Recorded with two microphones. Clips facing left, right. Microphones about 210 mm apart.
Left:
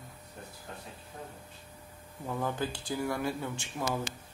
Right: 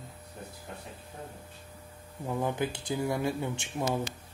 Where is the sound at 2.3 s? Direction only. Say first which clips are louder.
Right 3 dB; 15° right (ahead or behind).